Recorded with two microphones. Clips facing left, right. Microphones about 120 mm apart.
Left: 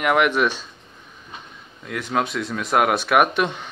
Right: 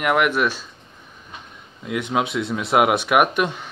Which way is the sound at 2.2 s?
20° right (ahead or behind).